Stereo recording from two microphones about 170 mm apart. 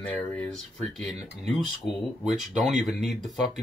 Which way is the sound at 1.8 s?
80° left.